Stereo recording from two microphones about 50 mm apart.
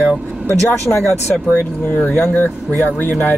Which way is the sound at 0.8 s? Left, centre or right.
Left.